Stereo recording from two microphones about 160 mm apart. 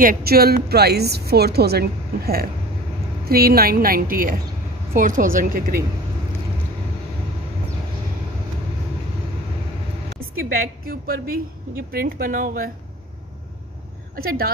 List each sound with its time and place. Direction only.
0.0 s a woman's voice: 65° right (ahead or behind)
10.0 s a woman's voice: 65° right (ahead or behind)
14.1 s a woman's voice: 65° right (ahead or behind)